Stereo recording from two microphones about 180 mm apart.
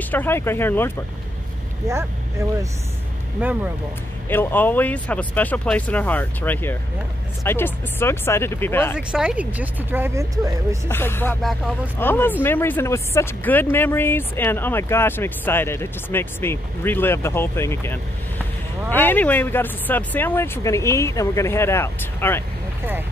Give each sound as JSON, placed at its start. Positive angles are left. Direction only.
{"t": 0.1, "sound": "speech", "side_deg": 10}
{"t": 1.8, "sound": "speech", "side_deg": -15}
{"t": 3.4, "sound": "speech", "side_deg": -10}
{"t": 4.3, "sound": "speech", "side_deg": 10}
{"t": 8.9, "sound": "speech", "side_deg": -5}
{"t": 10.9, "sound": "speech", "side_deg": 10}
{"t": 11.4, "sound": "speech", "side_deg": 0}
{"t": 12.0, "sound": "speech", "side_deg": 10}